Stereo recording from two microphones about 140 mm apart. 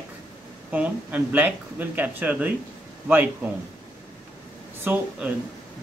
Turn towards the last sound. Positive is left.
turn(degrees=-10)  # may be behind; listen again after turning